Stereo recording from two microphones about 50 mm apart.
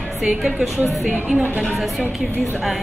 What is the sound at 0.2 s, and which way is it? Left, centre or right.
Speech, centre.